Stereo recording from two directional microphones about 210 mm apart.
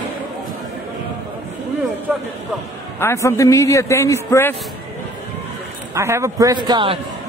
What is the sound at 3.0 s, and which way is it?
A man's voice, 10° left (ahead or behind).